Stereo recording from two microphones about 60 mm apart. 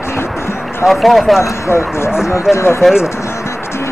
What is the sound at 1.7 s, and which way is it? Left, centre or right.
Speech, left.